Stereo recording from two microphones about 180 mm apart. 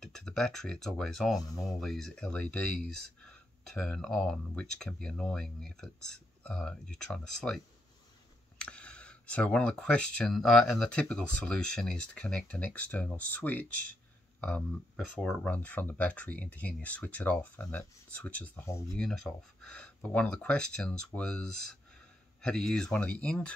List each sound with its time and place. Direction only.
0.0 s speech: 5° left (ahead or behind)
18.9 s speech: centre (ahead or behind)